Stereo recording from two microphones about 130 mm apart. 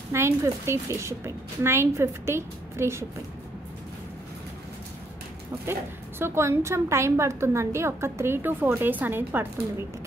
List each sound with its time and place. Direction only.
0.1 s a woman's voice: 20° right (ahead or behind)
5.7 s a woman's voice: 20° right (ahead or behind)